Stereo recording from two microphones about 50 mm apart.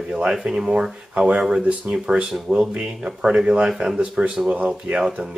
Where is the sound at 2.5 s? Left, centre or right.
Right.